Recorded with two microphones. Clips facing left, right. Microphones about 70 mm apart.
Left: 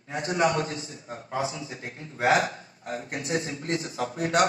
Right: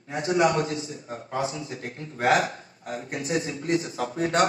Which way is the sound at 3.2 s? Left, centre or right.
Left.